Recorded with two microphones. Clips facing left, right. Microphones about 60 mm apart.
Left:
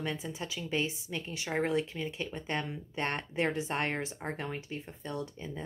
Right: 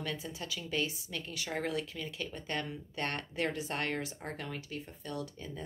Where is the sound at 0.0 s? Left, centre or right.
Left.